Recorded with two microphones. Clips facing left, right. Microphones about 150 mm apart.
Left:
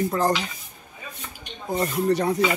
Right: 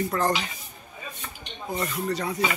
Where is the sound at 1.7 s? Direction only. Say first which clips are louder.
Left 5 dB; 40° left (ahead or behind).